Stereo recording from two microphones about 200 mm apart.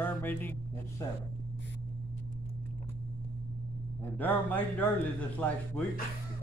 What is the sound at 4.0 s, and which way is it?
A man's voice, 10° left (ahead or behind).